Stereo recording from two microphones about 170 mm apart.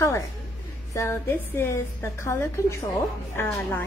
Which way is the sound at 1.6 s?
15° left (ahead or behind).